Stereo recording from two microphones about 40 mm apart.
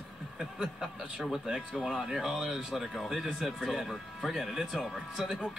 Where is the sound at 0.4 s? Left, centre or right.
Right.